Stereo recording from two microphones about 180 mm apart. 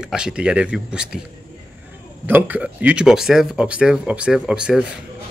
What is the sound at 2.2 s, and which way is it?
Speech, 10° right (ahead or behind).